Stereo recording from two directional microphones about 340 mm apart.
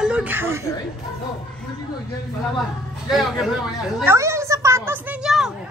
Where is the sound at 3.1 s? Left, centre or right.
Centre.